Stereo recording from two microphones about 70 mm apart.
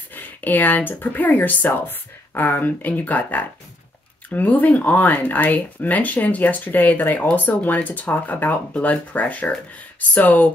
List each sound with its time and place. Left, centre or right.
0.1 s speech: left